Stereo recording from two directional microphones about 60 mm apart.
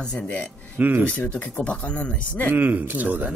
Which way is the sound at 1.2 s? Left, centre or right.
Left.